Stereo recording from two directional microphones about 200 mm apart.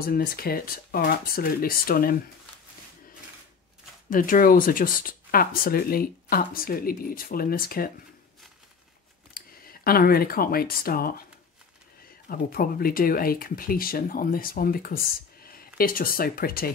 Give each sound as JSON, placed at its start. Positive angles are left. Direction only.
{"t": 0.0, "sound": "speech", "side_deg": 50}
{"t": 4.1, "sound": "speech", "side_deg": 45}
{"t": 9.3, "sound": "speech", "side_deg": 45}
{"t": 12.3, "sound": "speech", "side_deg": 50}